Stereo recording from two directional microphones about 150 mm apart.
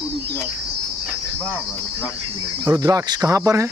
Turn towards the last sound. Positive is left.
turn(degrees=-20)  # may be behind; listen again after turning